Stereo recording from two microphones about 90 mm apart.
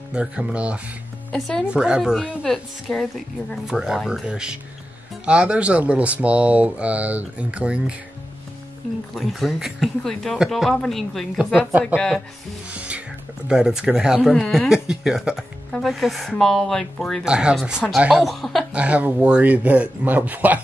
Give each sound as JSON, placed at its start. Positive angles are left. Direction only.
{"t": 0.1, "sound": "speech", "side_deg": -10}
{"t": 1.3, "sound": "speech", "side_deg": 5}
{"t": 1.7, "sound": "speech", "side_deg": -10}
{"t": 3.6, "sound": "speech", "side_deg": -5}
{"t": 9.1, "sound": "speech", "side_deg": 0}
{"t": 12.7, "sound": "music", "side_deg": -15}
{"t": 13.5, "sound": "speech", "side_deg": -5}
{"t": 17.2, "sound": "speech", "side_deg": -10}
{"t": 18.7, "sound": "speech", "side_deg": -15}